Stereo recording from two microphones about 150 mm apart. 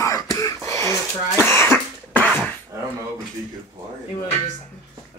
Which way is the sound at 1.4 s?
15° left (ahead or behind).